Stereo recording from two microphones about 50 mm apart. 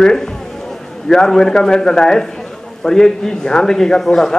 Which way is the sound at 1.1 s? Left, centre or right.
Centre.